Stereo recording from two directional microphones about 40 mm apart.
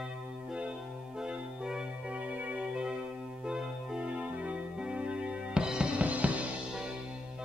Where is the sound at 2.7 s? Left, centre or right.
Centre.